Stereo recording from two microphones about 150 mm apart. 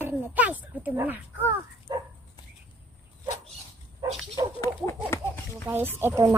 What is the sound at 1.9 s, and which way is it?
Dog, 25° right (ahead or behind).